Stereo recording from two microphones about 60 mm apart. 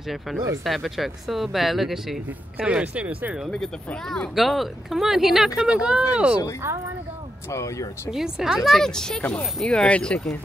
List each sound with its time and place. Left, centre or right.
0.7 s speech: centre
2.6 s speech: centre
3.4 s speech: centre
7.5 s speech: left
8.1 s speech: centre